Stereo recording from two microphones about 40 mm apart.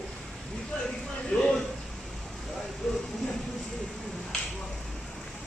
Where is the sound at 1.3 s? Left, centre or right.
Centre.